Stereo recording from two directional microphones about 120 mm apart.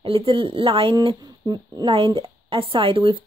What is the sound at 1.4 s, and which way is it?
Speech, 35° right (ahead or behind).